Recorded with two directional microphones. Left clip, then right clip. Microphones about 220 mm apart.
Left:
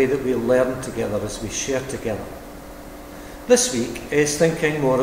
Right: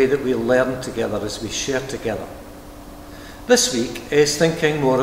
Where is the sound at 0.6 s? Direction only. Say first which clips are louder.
Right 1 dB; 20° right (ahead or behind).